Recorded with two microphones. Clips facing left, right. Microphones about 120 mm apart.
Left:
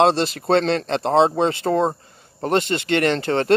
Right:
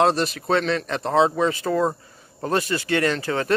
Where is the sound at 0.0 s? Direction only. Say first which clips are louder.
Left 3 dB; 30° left (ahead or behind).